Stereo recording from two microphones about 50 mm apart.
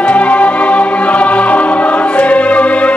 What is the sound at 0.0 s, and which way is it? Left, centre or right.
Music, left.